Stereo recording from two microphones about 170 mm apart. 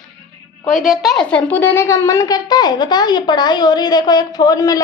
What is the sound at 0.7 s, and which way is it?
A woman's voice, centre (ahead or behind).